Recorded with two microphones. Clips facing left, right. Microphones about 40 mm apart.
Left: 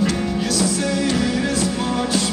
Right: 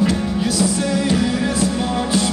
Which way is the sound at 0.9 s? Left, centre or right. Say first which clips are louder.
Right 2 dB; centre.